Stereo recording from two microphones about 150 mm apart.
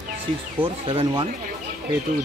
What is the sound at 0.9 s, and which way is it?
Speech, 35° right (ahead or behind).